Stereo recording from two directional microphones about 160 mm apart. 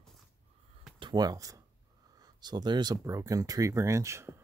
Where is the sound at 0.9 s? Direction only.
30° right (ahead or behind).